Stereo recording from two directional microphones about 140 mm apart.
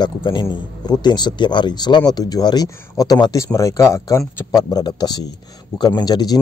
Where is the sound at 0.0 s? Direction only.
35° left (ahead or behind).